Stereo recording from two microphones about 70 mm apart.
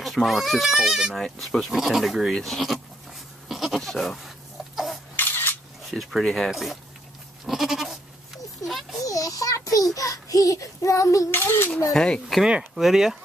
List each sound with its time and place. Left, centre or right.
0.0 s speech: centre
3.4 s goat: centre
5.1 s a sound: left
5.9 s speech: centre
7.4 s goat: centre
9.0 s a sound: left
9.9 s child singing: left
11.2 s speech: left
11.9 s speech: centre
12.4 s speech: centre